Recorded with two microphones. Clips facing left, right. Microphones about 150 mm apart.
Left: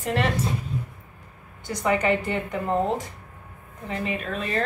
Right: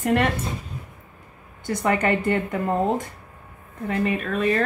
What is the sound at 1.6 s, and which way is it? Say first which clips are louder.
A woman's voice: right 1 dB; 50° right (ahead or behind).